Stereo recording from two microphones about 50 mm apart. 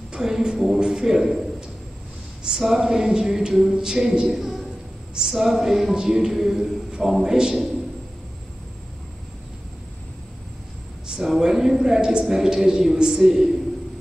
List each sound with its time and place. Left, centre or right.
0.1 s a man's voice: centre
2.4 s a woman's voice: centre
11.1 s a woman's voice: centre